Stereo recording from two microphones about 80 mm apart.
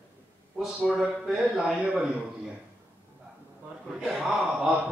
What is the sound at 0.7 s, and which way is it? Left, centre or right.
A man's voice, centre.